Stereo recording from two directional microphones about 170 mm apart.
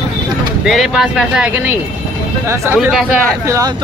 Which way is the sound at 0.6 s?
Centre (ahead or behind).